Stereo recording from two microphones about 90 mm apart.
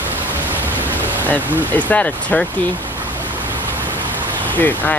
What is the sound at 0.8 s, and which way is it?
Speech, 20° left (ahead or behind).